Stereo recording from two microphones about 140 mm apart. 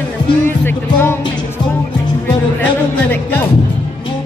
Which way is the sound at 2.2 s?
10° left (ahead or behind).